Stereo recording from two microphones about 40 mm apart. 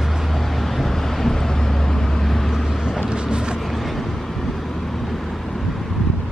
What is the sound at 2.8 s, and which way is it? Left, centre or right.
Vehicle, centre.